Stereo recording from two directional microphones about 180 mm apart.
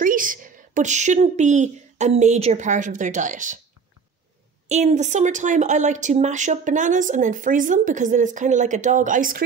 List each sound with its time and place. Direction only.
0.0 s a woman's voice: 50° right (ahead or behind)
4.6 s speech: 40° right (ahead or behind)